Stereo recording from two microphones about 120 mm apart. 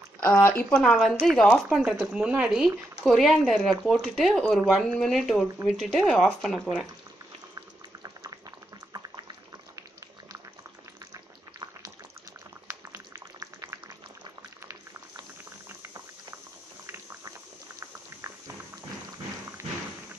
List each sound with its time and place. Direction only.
0.2 s speech: 20° left (ahead or behind); by 6.7 s 5° left (ahead or behind)
7.5 s boiling: 30° right (ahead or behind)
12.6 s boiling: 20° right (ahead or behind)
15.8 s boiling: 30° right (ahead or behind)
18.2 s boiling: 35° right (ahead or behind)